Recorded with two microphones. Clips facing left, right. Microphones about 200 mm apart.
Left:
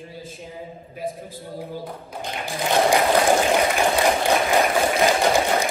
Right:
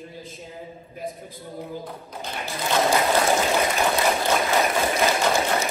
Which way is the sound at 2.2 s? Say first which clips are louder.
Left 3 dB; 15° left (ahead or behind).